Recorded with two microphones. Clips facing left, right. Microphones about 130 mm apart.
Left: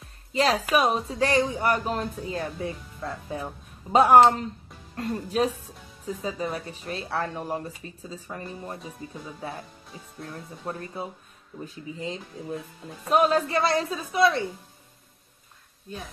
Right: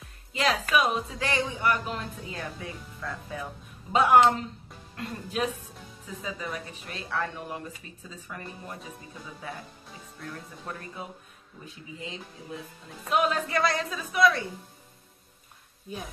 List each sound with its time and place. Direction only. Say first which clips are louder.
0.3 s a woman's voice: left 3 dB; 35° left (ahead or behind)
10.6 s a woman's voice: left 7 dB; 30° left (ahead or behind)